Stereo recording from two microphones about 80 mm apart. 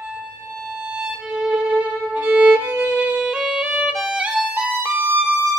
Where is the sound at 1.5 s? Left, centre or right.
Centre.